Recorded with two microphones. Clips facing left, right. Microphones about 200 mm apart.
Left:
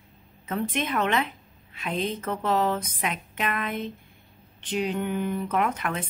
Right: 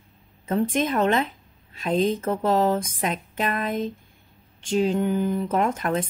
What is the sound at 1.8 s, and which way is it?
Speech, 30° right (ahead or behind).